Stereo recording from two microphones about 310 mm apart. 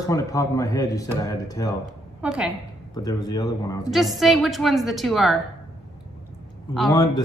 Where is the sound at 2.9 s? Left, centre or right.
Centre.